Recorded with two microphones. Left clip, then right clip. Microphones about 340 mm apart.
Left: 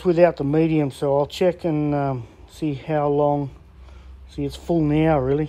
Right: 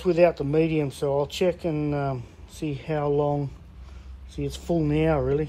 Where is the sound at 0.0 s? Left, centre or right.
Left.